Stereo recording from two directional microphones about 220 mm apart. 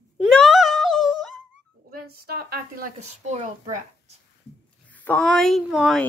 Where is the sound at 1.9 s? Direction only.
40° right (ahead or behind).